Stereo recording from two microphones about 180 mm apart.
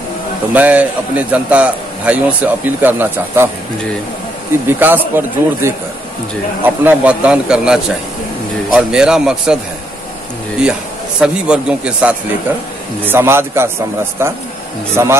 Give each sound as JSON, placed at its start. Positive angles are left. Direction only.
{"t": 0.6, "sound": "a man's voice", "side_deg": -10}
{"t": 4.6, "sound": "a man's voice", "side_deg": -10}
{"t": 11.1, "sound": "a man's voice", "side_deg": -5}